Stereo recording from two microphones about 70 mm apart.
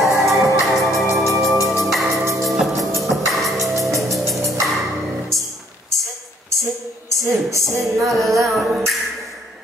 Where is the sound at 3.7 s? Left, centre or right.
Right.